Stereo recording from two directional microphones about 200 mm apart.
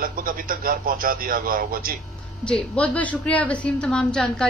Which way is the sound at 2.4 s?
5° left (ahead or behind).